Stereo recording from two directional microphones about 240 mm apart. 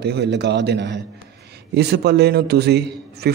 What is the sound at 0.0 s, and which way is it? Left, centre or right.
Speech, right.